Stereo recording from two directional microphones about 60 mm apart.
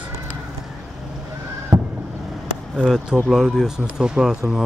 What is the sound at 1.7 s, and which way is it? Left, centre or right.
Boat, right.